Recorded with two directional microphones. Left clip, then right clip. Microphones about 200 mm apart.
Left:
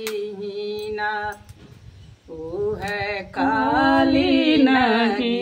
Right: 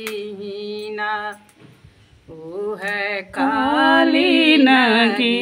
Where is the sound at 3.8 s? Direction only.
15° right (ahead or behind).